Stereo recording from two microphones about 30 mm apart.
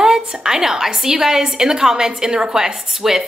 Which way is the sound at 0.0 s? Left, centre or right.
Centre.